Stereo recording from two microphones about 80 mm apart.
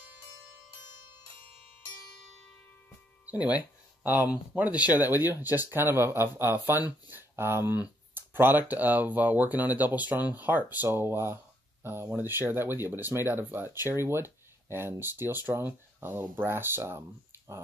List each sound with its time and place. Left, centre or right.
3.3 s speech: left
4.0 s speech: right
5.1 s speech: left
5.7 s speech: right